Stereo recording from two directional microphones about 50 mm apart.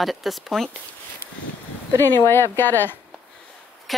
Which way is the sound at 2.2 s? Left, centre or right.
Left.